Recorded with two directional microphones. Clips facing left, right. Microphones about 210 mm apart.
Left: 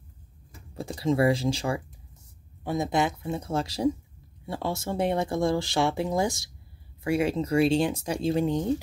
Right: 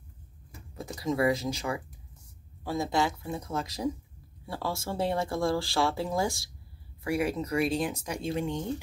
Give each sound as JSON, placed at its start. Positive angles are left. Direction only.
{"t": 0.7, "sound": "speech", "side_deg": 30}